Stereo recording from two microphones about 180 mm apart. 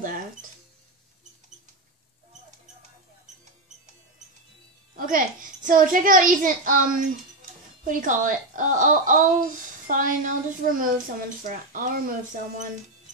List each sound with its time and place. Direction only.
4.9 s a child's voice: 50° right (ahead or behind)